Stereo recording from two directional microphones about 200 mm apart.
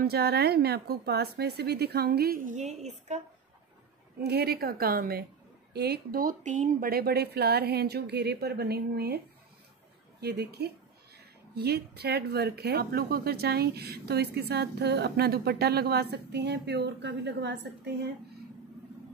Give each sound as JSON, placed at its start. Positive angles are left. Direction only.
{"t": 0.0, "sound": "speech", "side_deg": -50}
{"t": 4.2, "sound": "speech", "side_deg": -55}
{"t": 10.2, "sound": "speech", "side_deg": -55}